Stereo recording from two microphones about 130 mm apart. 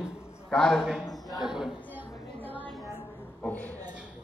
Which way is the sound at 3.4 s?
10° left (ahead or behind).